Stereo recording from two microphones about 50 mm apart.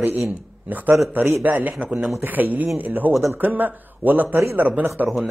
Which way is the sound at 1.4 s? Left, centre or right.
Right.